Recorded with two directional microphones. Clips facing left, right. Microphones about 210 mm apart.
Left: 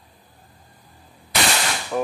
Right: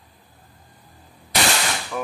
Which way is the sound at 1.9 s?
30° left (ahead or behind).